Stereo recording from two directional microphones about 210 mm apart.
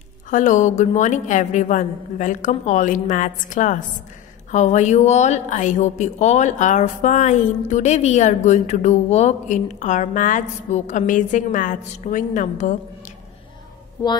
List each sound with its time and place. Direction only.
0.3 s a woman's voice: 35° left (ahead or behind)